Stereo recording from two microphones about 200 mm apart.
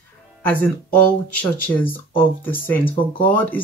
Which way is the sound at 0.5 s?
10° left (ahead or behind).